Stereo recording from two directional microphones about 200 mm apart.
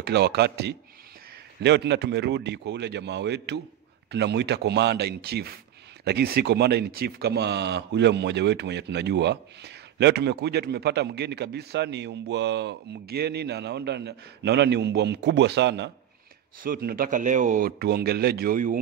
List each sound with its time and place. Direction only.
0.0 s speech: 55° right (ahead or behind)
16.6 s speech: 45° right (ahead or behind)